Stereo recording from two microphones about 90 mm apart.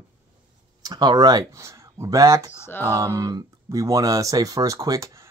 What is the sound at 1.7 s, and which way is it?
Speech, 35° right (ahead or behind).